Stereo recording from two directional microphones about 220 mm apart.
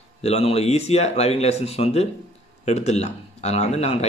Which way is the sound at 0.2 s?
30° left (ahead or behind).